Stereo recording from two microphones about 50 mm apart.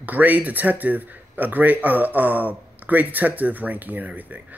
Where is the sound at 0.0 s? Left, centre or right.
Right.